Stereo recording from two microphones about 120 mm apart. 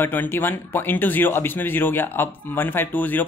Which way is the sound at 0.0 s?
15° left (ahead or behind).